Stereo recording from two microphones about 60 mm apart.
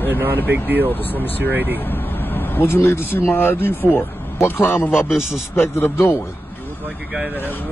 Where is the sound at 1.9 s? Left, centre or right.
Left.